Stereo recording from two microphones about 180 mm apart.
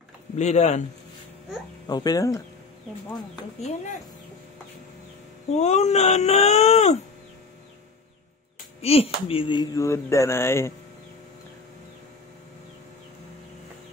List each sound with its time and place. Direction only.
0.4 s speech: 40° left (ahead or behind)
1.9 s speech: 20° left (ahead or behind)
3.6 s speech: 45° left (ahead or behind)
5.6 s speech: 40° left (ahead or behind)
8.8 s speech: 35° left (ahead or behind); by 10.7 s 15° left (ahead or behind)